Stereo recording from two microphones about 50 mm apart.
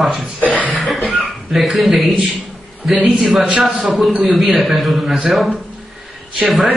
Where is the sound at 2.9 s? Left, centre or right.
Right.